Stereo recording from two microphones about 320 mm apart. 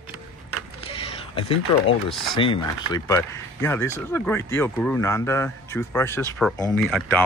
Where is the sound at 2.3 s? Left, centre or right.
Centre.